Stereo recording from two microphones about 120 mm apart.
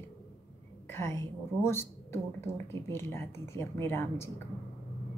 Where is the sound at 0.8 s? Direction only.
20° left (ahead or behind).